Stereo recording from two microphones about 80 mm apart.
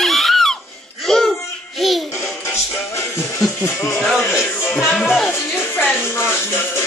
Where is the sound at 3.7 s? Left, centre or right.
Left.